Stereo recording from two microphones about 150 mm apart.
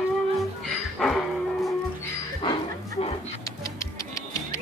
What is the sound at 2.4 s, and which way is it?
Bow-wow, 35° left (ahead or behind).